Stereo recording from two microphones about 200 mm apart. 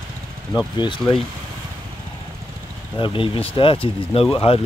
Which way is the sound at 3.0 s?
25° left (ahead or behind).